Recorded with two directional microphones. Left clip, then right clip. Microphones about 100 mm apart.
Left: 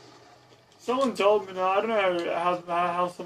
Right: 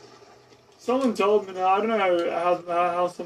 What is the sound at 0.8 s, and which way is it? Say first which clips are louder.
Speech: right 2 dB; 20° right (ahead or behind).